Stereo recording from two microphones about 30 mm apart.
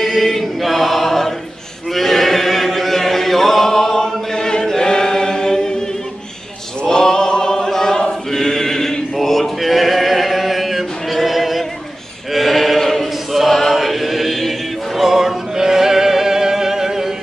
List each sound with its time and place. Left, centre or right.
0.0 s choir: centre
2.0 s chant: centre
6.8 s choir: left
8.3 s chant: centre
9.1 s a sound: centre
13.0 s choir: centre
13.7 s chant: centre
15.0 s music: centre